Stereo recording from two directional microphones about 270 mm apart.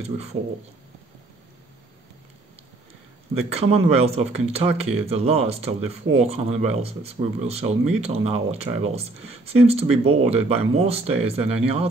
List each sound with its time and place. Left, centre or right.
0.0 s speech: right
3.3 s speech: right